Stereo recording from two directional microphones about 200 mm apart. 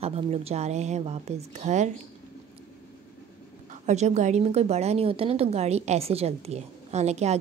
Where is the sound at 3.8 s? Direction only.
35° right (ahead or behind).